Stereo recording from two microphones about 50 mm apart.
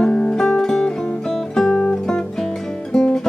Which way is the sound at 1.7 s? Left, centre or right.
Left.